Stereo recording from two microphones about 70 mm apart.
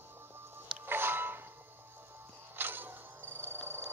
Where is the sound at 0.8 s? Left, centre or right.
Right.